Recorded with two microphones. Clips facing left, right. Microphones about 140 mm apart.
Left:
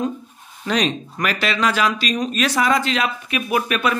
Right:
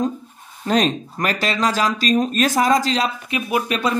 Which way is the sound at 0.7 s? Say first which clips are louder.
Right 3 dB; 40° right (ahead or behind).